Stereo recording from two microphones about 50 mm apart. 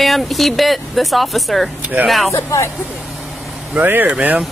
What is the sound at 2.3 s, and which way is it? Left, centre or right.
Speech, left.